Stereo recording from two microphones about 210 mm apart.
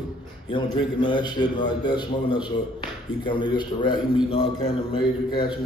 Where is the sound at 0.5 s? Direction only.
20° left (ahead or behind).